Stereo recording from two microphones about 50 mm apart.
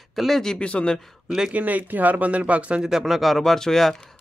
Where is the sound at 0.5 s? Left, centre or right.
Left.